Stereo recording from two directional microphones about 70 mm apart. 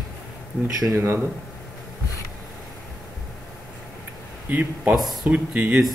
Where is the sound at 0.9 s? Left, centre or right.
Right.